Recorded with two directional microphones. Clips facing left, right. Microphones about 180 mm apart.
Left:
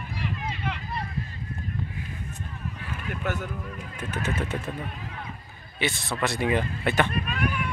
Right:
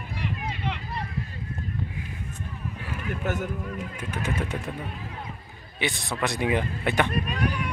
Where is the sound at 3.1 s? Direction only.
45° right (ahead or behind).